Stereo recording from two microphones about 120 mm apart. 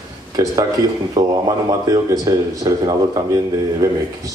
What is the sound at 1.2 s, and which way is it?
Speech, 30° right (ahead or behind).